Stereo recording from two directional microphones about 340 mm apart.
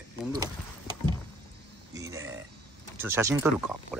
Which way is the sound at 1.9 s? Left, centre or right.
Centre.